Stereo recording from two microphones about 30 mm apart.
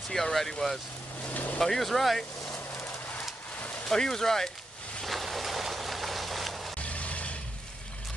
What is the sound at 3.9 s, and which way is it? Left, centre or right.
Speech, centre.